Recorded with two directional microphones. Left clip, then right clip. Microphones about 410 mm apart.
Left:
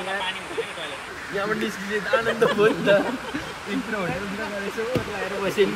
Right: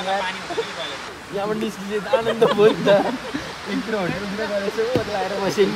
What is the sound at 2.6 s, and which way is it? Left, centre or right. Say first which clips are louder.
Speech: right 4 dB; right.